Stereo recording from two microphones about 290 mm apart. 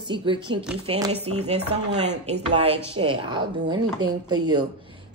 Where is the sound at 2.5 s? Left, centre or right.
Centre.